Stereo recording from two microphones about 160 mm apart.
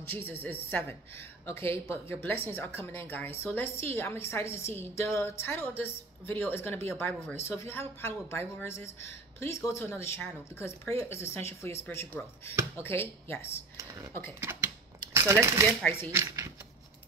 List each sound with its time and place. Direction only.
0.1 s a woman's voice: 10° left (ahead or behind)
14.4 s speech: 15° right (ahead or behind)
15.8 s a woman's voice: 15° left (ahead or behind)
16.1 s speech: 15° right (ahead or behind)